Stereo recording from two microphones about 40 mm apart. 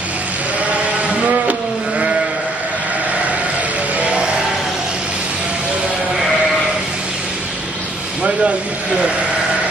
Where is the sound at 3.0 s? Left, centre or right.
Right.